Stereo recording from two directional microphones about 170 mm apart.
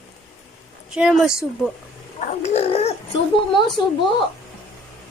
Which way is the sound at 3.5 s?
25° left (ahead or behind).